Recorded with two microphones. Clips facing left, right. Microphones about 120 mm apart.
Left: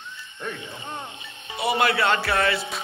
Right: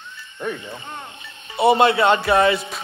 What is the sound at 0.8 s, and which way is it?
Speech, 20° left (ahead or behind).